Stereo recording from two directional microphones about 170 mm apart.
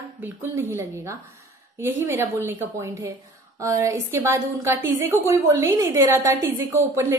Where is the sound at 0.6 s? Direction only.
15° right (ahead or behind).